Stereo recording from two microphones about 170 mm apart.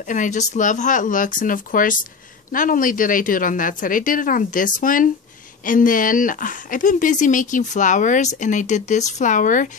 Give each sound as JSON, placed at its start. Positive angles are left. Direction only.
{"t": 0.0, "sound": "speech", "side_deg": 50}